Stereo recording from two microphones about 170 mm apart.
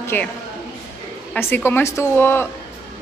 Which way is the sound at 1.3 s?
10° left (ahead or behind).